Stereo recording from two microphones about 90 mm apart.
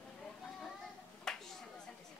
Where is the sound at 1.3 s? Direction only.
5° left (ahead or behind).